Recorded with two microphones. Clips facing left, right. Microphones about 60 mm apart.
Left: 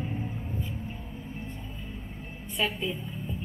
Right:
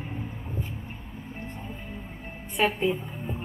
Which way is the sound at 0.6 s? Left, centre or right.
Right.